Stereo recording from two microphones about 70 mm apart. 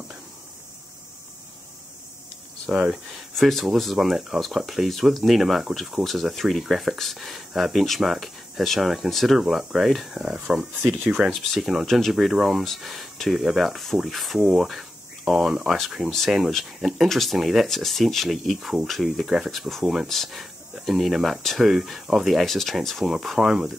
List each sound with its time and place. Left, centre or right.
2.7 s speech: centre
3.3 s speech: centre
11.3 s speech: centre